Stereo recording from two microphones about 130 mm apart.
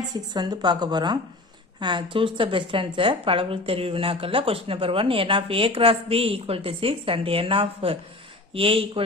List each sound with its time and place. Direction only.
0.1 s a woman's voice: 30° right (ahead or behind)